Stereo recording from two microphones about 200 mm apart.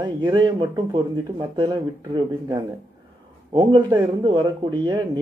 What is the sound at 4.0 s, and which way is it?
Speech, 20° right (ahead or behind).